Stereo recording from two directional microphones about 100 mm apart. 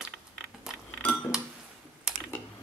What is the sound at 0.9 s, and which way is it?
Dishes, 15° left (ahead or behind).